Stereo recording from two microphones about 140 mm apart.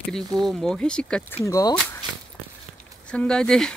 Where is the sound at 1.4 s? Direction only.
25° left (ahead or behind).